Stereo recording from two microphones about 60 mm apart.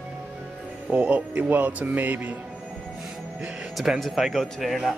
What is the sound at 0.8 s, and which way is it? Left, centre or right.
Speech, right.